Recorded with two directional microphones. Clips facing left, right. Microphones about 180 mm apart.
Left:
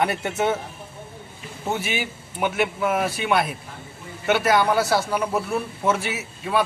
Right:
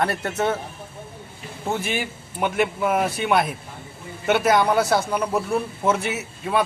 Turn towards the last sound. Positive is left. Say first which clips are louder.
# right 1 dB
turn(degrees=0)  # may be behind; listen again after turning